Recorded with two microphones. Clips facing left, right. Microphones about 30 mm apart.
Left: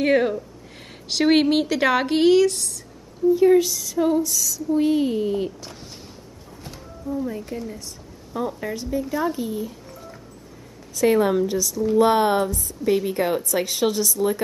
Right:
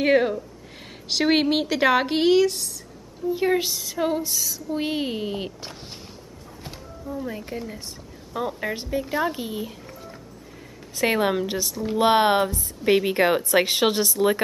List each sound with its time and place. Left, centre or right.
0.0 s speech: centre
3.3 s a sound: right
7.2 s a sound: right
9.1 s a woman's voice: right
9.8 s music: centre
11.0 s a woman's voice: right